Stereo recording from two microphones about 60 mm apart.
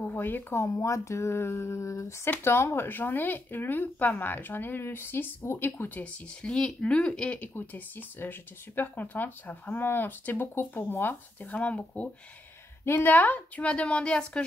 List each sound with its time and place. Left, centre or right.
0.0 s speech: left
0.6 s speech: left
2.4 s speech: left
6.4 s speech: centre
7.5 s speech: left
11.5 s a woman's voice: left
12.8 s a woman's voice: left; by 14.4 s centre